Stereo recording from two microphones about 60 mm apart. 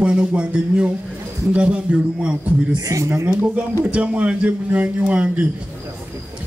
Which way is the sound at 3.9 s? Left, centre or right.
Right.